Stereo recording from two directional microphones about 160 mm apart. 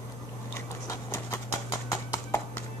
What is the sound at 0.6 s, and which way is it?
Clip-clop, 15° left (ahead or behind).